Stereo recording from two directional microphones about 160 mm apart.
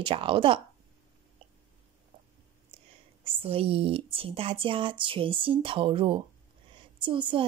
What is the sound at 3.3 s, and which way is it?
Speech, 35° right (ahead or behind).